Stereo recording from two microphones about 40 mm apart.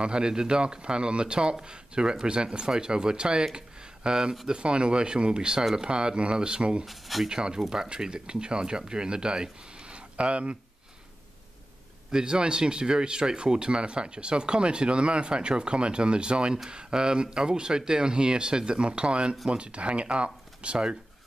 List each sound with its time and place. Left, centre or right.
0.0 s speech: right
6.9 s speech: centre
7.2 s speech: centre
12.1 s speech: centre